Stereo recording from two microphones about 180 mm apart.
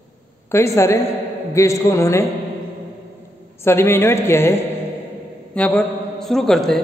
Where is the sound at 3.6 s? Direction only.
15° left (ahead or behind).